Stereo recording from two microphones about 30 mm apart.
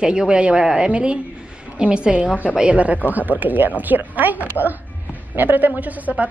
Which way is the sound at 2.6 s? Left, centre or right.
Right.